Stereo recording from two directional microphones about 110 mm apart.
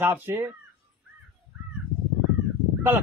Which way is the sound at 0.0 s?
20° right (ahead or behind).